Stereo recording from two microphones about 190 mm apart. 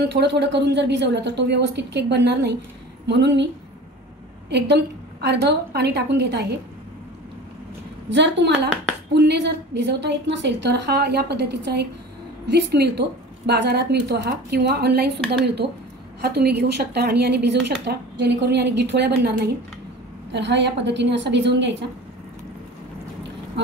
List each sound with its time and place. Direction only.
0.0 s a woman's voice: 60° right (ahead or behind)
4.5 s a woman's voice: 60° right (ahead or behind)
8.1 s a woman's voice: 65° right (ahead or behind)